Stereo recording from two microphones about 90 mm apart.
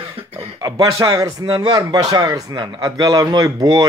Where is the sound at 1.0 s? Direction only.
45° right (ahead or behind).